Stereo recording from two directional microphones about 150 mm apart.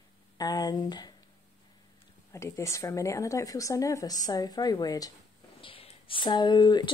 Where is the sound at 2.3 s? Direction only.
20° left (ahead or behind).